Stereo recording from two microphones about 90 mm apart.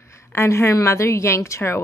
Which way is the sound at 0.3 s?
30° left (ahead or behind).